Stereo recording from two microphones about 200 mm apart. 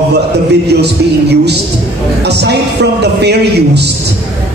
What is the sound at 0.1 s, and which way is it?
Speech, 55° right (ahead or behind).